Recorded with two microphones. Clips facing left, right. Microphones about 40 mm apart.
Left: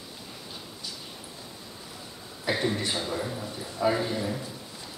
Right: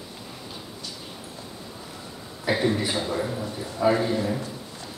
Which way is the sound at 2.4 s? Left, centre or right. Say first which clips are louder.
Right 4 dB; centre.